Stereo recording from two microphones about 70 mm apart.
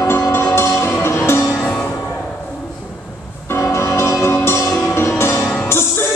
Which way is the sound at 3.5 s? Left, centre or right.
Left.